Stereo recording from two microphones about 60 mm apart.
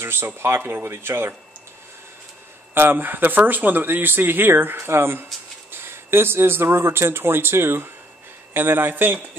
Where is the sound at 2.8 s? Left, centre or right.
Right.